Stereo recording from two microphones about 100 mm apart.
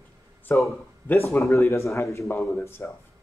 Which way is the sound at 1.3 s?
30° left (ahead or behind).